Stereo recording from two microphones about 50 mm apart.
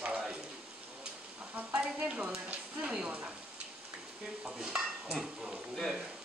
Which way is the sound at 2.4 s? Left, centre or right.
Right.